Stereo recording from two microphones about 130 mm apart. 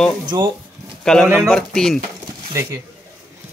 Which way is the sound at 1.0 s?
5° left (ahead or behind).